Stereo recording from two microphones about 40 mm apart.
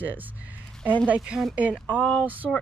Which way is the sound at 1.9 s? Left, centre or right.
Left.